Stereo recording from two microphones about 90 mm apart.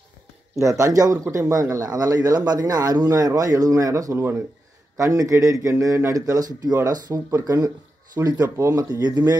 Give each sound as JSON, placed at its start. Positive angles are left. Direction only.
{"t": 0.6, "sound": "speech", "side_deg": -35}
{"t": 8.5, "sound": "speech", "side_deg": -35}
{"t": 9.0, "sound": "speech", "side_deg": -50}